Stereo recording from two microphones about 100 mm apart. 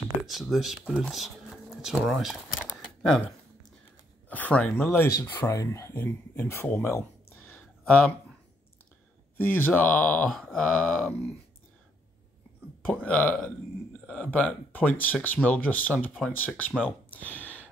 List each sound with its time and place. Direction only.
0.3 s speech: centre (ahead or behind)
4.3 s speech: 15° left (ahead or behind)
9.4 s speech: 20° left (ahead or behind)
12.8 s speech: 15° left (ahead or behind)
17.1 s a sound: 15° left (ahead or behind)